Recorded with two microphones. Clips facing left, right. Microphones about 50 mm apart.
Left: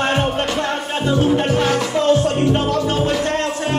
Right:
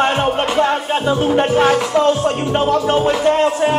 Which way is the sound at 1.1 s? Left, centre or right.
Right.